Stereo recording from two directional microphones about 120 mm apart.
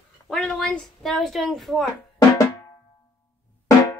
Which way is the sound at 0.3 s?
5° left (ahead or behind).